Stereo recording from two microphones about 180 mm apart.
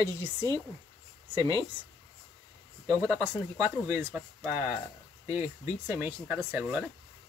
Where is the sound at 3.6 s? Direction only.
15° right (ahead or behind).